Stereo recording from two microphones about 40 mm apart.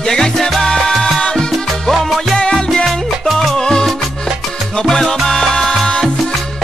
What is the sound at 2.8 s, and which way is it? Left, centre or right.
Salsa music, centre.